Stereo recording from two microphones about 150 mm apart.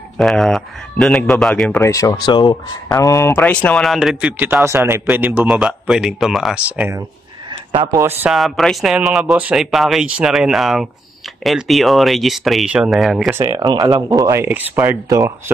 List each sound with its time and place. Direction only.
0.2 s speech: centre (ahead or behind)
1.8 s speech: 20° left (ahead or behind); by 6.9 s centre (ahead or behind)
7.9 s speech: 15° right (ahead or behind)
8.3 s speech: centre (ahead or behind)
13.3 s speech: 20° right (ahead or behind)